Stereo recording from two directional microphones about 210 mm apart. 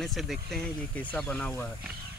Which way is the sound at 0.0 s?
Centre (ahead or behind).